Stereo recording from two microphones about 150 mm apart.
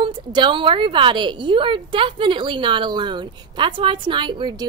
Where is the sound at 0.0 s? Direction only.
35° right (ahead or behind).